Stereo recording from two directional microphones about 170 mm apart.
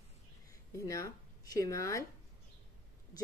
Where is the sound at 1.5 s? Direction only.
20° left (ahead or behind).